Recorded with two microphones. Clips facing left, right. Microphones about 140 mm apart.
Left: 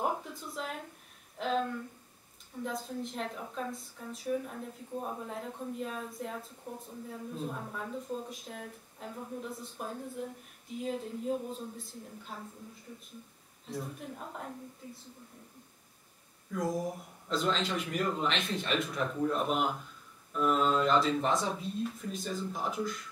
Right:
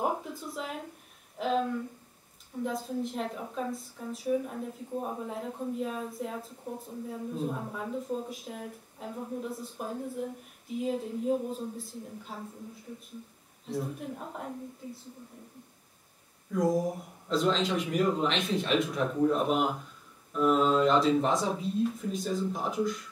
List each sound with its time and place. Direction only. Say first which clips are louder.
0.0 s a sound: right 3 dB; 5° right (ahead or behind)
1.4 s a woman's voice: right 3 dB; 5° right (ahead or behind)
13.7 s a woman's voice: right 5 dB; 5° right (ahead or behind)
16.7 s a woman's voice: right 5 dB; centre (ahead or behind)